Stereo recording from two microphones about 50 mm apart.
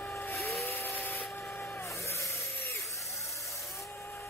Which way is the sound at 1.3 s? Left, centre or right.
Left.